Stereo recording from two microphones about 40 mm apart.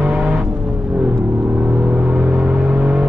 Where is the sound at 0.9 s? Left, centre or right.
Right.